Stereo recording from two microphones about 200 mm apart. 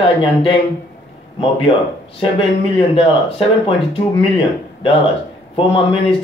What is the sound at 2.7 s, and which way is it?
Speech, 30° left (ahead or behind).